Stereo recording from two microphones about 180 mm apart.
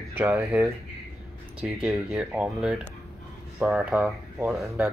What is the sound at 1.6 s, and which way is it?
Speech, 5° right (ahead or behind).